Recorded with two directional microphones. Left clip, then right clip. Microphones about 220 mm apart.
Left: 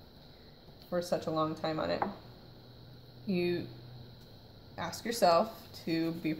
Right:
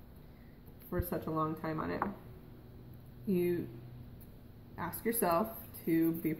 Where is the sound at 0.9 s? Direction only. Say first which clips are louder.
Left 5 dB; 35° left (ahead or behind).